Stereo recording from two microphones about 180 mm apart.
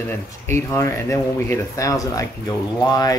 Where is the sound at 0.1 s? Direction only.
15° left (ahead or behind).